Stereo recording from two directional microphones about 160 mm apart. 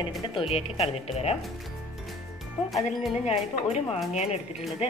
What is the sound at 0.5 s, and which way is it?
Speech, 40° left (ahead or behind).